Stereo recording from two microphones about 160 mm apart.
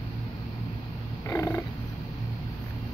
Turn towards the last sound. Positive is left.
turn(degrees=15)  # may be behind; listen again after turning